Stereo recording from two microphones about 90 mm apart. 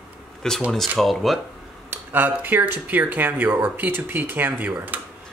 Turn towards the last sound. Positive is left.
turn(degrees=-15)  # may be behind; listen again after turning